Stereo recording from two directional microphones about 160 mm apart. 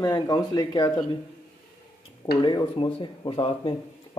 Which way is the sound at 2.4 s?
30° left (ahead or behind).